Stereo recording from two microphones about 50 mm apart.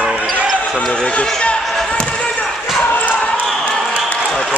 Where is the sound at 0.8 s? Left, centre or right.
Centre.